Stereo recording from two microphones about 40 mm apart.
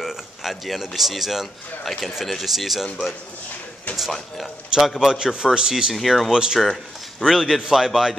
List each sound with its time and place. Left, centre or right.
0.0 s speech: centre
4.7 s speech: centre
5.9 s speech: centre
6.3 s speech: centre
6.6 s speech: centre